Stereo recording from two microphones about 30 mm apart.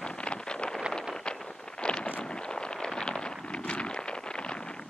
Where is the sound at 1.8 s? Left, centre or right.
Left.